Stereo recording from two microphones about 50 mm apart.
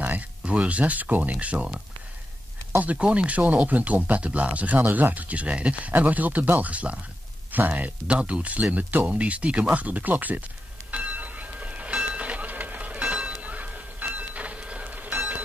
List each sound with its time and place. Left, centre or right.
0.0 s a sound: right
0.6 s speech: right
2.8 s speech: right
4.7 s speech: right
10.9 s bell: right
12.0 s train: right
13.5 s music: right